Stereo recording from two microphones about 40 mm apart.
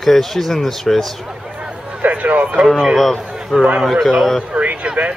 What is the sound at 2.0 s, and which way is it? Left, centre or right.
Speech, right.